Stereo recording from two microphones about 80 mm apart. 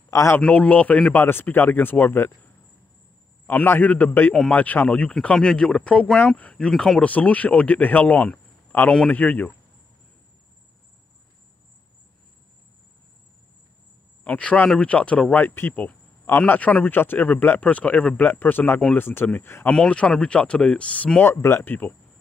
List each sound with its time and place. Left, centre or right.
0.1 s a man's voice: left
0.4 s a man's voice: centre
6.7 s speech: centre
7.0 s a man's voice: centre
14.2 s a man's voice: centre
18.2 s a man's voice: left
19.7 s speech: centre
21.2 s speech: left
21.6 s a man's voice: left